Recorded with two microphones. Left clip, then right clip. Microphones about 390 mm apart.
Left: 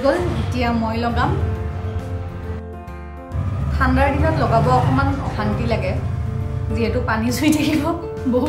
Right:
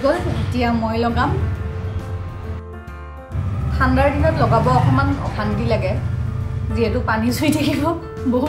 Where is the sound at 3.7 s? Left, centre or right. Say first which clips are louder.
Right 1 dB; centre.